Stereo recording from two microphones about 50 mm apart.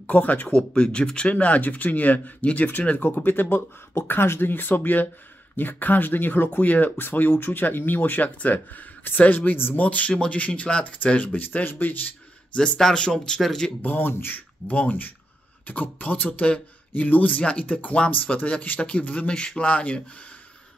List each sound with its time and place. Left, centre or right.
0.0 s speech: left
9.8 s speech: left
12.5 s speech: centre
13.8 s speech: left